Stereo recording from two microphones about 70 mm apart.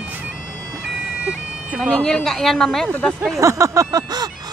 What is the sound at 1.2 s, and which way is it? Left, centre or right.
Bagpipes, centre.